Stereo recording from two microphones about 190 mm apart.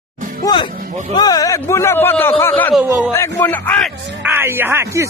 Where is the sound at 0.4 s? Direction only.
20° left (ahead or behind).